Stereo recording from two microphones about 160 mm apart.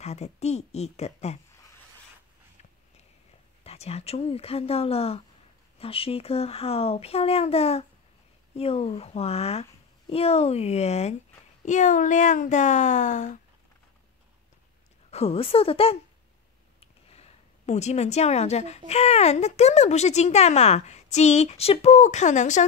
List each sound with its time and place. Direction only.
0.0 s a woman's voice: 45° left (ahead or behind)
3.6 s a child's voice: 40° left (ahead or behind)
15.0 s a child's voice: 40° left (ahead or behind)
17.1 s a woman's voice: 40° left (ahead or behind)